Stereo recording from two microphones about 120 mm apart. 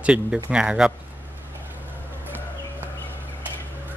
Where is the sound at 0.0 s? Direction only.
10° right (ahead or behind).